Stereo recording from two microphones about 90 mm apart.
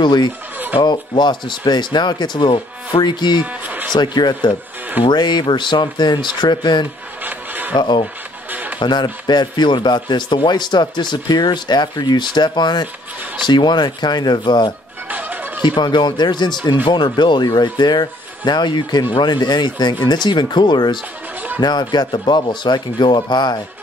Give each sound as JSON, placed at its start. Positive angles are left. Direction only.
{"t": 0.0, "sound": "speech", "side_deg": 50}
{"t": 3.6, "sound": "music", "side_deg": -20}
{"t": 3.9, "sound": "speech", "side_deg": 55}
{"t": 7.2, "sound": "a sound", "side_deg": -20}
{"t": 7.7, "sound": "speech", "side_deg": 55}
{"t": 8.5, "sound": "music", "side_deg": -20}
{"t": 8.7, "sound": "speech", "side_deg": 55}
{"t": 15.0, "sound": "music", "side_deg": -20}
{"t": 15.6, "sound": "speech", "side_deg": 55}